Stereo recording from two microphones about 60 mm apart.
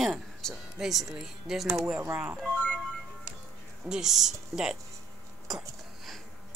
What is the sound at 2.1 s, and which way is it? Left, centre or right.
Speech, centre.